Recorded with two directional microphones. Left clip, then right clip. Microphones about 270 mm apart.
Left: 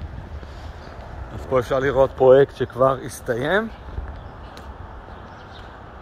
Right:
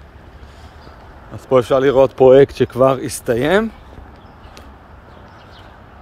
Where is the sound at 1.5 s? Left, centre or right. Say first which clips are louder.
Right 7 dB; right.